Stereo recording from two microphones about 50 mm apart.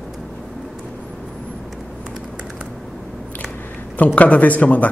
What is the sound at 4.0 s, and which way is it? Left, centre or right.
Speech, left.